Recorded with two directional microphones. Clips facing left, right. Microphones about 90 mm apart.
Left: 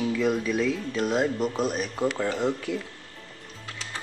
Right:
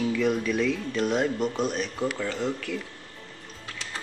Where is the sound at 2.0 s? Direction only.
20° left (ahead or behind).